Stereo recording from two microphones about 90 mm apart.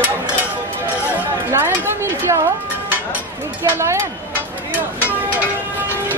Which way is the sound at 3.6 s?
30° right (ahead or behind).